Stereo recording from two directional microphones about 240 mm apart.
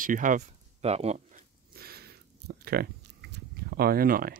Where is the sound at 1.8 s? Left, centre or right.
Right.